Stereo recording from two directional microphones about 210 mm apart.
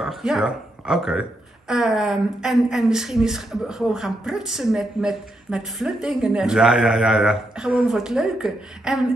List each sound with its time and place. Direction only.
0.0 s a woman's voice: centre (ahead or behind)